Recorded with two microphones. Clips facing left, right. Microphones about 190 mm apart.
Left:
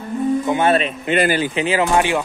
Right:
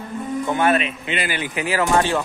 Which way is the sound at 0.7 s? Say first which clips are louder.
Left 6 dB; 40° left (ahead or behind).